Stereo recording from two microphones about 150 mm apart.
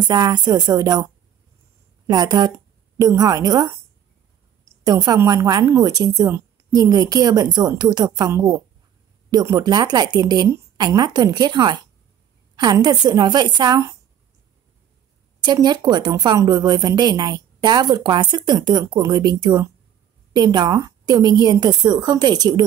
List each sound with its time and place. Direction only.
0.1 s a woman's voice: 25° right (ahead or behind)
2.0 s a woman's voice: 25° right (ahead or behind)
4.8 s a woman's voice: 25° right (ahead or behind)
15.4 s a woman's voice: 25° right (ahead or behind)